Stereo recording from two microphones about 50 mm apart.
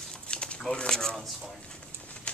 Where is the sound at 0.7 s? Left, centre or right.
Centre.